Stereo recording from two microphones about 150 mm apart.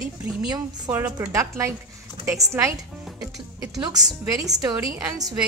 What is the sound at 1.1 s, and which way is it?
A woman's voice, 20° right (ahead or behind).